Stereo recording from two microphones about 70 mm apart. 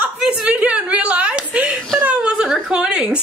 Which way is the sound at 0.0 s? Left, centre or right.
Centre.